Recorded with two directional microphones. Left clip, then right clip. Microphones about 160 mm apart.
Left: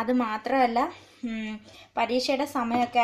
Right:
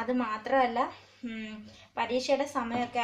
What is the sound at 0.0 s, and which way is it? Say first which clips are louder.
A woman's voice: left 4 dB; 40° left (ahead or behind).